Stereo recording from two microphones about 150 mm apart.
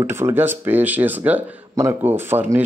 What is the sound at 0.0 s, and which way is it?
Speech, 15° right (ahead or behind).